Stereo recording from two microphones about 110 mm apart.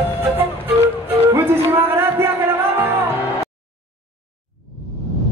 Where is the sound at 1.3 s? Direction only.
20° right (ahead or behind).